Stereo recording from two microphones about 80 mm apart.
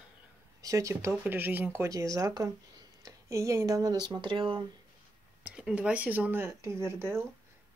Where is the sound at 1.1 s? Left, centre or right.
Right.